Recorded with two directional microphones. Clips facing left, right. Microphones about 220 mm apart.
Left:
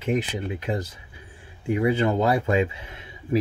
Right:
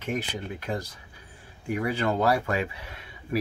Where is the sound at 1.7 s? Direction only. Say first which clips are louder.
Left 5 dB; 20° left (ahead or behind).